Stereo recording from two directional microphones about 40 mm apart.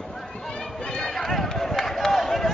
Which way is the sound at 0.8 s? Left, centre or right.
Centre.